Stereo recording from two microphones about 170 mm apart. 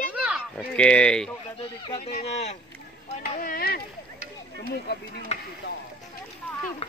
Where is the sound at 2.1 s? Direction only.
40° left (ahead or behind).